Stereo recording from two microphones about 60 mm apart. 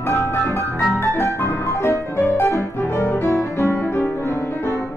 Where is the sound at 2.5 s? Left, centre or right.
Left.